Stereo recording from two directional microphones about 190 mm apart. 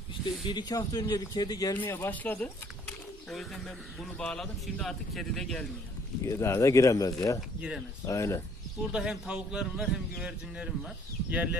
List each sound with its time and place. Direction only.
0.2 s a man's voice: 25° left (ahead or behind); by 5.7 s 5° left (ahead or behind)
6.2 s speech: 15° left (ahead or behind)
7.3 s a man's voice: 5° right (ahead or behind)
8.1 s speech: 15° left (ahead or behind)
8.9 s a man's voice: centre (ahead or behind)